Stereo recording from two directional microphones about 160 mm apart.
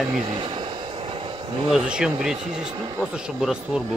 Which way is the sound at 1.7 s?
5° right (ahead or behind).